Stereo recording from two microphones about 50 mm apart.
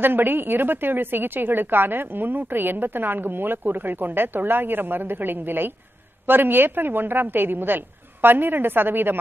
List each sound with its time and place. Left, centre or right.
0.0 s a woman's voice: right